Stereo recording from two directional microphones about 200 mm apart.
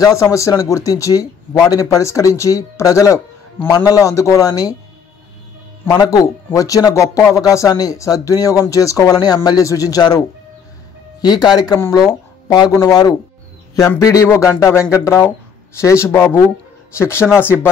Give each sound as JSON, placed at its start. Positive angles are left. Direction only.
{"t": 0.0, "sound": "speech", "side_deg": 15}
{"t": 5.9, "sound": "speech", "side_deg": 20}